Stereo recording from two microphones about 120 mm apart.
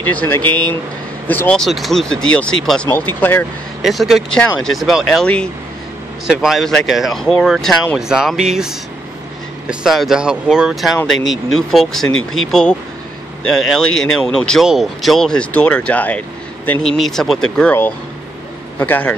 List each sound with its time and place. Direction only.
0.0 s speech: 15° left (ahead or behind)
1.6 s speech: centre (ahead or behind)
3.0 s speech: 15° left (ahead or behind)
3.8 s speech: centre (ahead or behind)
6.2 s speech: centre (ahead or behind)
18.8 s speech: 15° left (ahead or behind)